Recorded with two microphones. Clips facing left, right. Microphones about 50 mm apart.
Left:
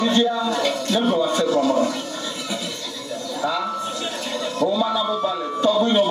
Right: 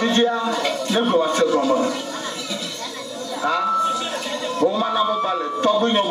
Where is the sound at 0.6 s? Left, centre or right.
Right.